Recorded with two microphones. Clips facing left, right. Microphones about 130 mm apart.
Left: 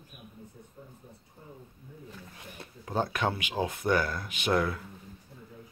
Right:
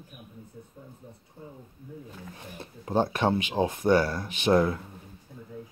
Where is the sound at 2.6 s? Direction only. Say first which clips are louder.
Right 5 dB; 25° right (ahead or behind).